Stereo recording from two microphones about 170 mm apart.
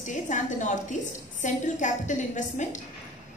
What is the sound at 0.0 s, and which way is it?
A woman's voice, 45° left (ahead or behind).